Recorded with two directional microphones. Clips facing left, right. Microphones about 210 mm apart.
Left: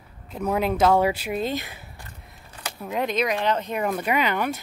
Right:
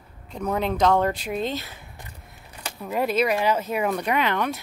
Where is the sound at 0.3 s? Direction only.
5° left (ahead or behind).